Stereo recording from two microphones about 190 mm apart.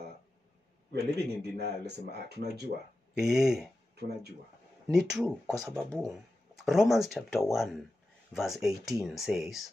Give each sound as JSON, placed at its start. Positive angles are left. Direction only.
{"t": 0.9, "sound": "speech", "side_deg": -60}
{"t": 3.2, "sound": "speech", "side_deg": 0}
{"t": 3.9, "sound": "speech", "side_deg": -60}
{"t": 4.8, "sound": "speech", "side_deg": 0}